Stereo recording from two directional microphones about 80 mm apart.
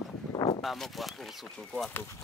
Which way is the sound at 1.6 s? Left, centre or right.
Centre.